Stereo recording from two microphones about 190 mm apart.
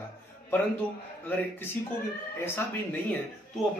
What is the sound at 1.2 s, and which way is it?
Speech, 10° left (ahead or behind).